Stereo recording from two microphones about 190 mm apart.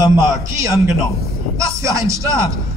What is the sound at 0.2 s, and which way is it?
A man's voice, 15° right (ahead or behind).